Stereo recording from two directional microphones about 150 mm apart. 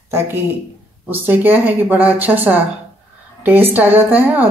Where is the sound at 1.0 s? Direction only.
15° right (ahead or behind).